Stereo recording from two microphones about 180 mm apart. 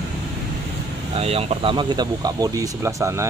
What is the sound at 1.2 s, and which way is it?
Speech, 35° right (ahead or behind).